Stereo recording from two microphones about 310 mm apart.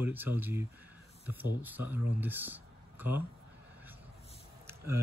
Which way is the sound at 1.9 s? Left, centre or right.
Centre.